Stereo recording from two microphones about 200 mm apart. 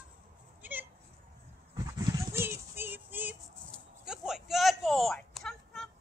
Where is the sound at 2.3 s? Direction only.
10° right (ahead or behind).